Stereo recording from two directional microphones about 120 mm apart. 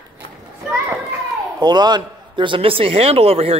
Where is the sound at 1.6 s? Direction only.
35° right (ahead or behind).